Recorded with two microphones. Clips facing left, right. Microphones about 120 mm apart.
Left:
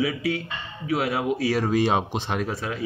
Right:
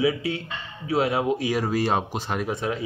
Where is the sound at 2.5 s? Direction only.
20° right (ahead or behind).